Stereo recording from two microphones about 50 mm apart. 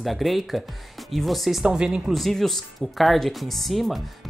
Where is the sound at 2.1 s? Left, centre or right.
Centre.